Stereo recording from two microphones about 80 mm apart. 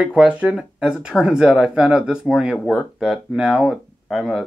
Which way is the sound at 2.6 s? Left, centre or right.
Centre.